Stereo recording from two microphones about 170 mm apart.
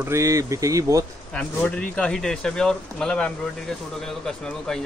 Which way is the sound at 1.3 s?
10° left (ahead or behind).